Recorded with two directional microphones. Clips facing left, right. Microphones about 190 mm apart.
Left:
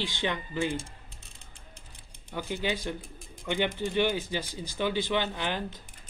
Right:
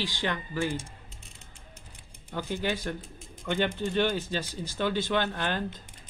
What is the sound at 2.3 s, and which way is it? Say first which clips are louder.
Speech: right 1 dB; 15° left (ahead or behind).